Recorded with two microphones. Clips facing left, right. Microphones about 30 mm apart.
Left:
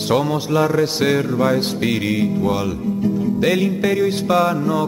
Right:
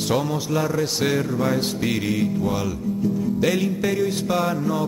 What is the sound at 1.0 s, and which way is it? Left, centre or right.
Music, centre.